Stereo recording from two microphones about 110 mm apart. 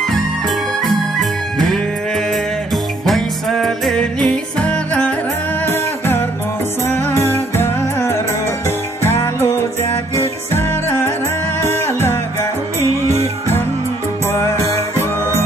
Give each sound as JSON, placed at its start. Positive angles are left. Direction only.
{"t": 0.0, "sound": "music", "side_deg": 5}
{"t": 14.2, "sound": "music", "side_deg": 25}